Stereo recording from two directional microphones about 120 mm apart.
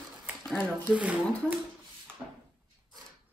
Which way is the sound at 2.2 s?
Centre (ahead or behind).